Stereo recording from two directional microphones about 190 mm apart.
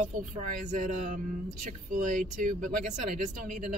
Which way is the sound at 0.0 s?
40° right (ahead or behind).